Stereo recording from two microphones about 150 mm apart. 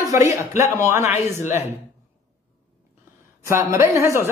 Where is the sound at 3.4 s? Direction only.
20° right (ahead or behind).